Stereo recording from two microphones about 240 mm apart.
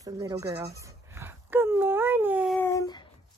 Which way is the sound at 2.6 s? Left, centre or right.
Centre.